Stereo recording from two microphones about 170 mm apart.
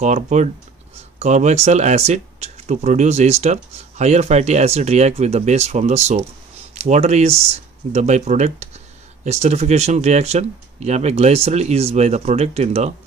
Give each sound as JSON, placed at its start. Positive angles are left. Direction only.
{"t": 0.0, "sound": "speech", "side_deg": -45}